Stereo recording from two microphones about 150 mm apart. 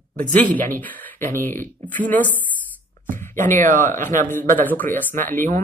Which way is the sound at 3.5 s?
15° left (ahead or behind).